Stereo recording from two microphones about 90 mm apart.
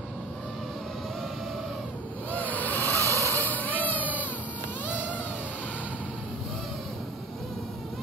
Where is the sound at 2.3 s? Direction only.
20° left (ahead or behind).